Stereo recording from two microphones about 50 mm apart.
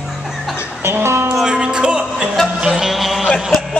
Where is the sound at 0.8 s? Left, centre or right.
Right.